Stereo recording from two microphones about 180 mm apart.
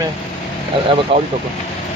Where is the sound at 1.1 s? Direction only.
30° right (ahead or behind).